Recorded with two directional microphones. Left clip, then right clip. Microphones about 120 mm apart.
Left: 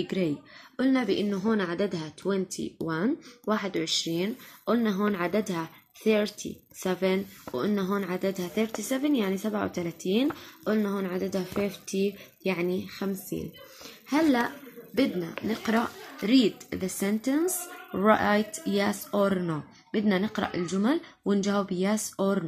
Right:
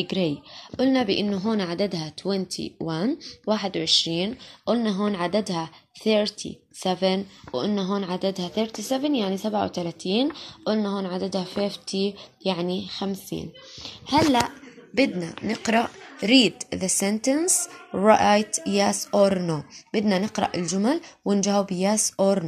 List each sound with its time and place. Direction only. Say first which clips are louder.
0.0 s speech: right 4 dB; 30° right (ahead or behind)
15.4 s speech: right 6 dB; 50° right (ahead or behind)
16.3 s speech: right 5 dB; 20° left (ahead or behind)
16.7 s speech: right 5 dB; 50° right (ahead or behind); by 22.4 s 35° right (ahead or behind)